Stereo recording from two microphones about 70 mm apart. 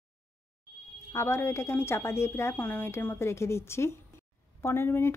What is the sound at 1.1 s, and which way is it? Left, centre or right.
Speech, left.